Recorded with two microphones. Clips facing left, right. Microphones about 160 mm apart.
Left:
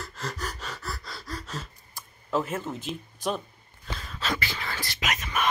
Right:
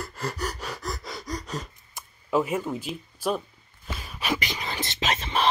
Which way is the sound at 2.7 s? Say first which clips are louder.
Right 2 dB; 5° right (ahead or behind).